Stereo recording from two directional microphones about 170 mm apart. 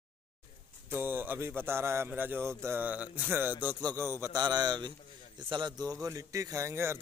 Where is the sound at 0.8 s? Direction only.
10° right (ahead or behind).